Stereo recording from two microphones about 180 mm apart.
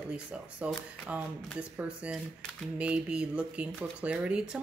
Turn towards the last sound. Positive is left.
turn(degrees=-5)  # may be behind; listen again after turning